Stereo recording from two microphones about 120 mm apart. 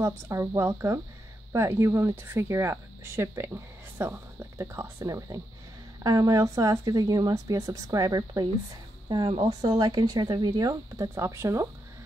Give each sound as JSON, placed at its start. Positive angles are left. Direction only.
{"t": 0.0, "sound": "speech", "side_deg": -25}